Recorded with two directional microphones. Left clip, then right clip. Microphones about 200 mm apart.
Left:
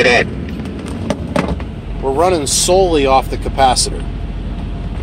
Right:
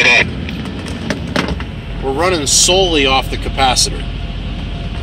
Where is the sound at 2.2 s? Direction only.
10° left (ahead or behind).